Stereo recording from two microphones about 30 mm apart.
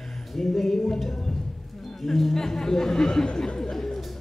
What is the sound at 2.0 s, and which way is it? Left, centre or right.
Chatter, centre.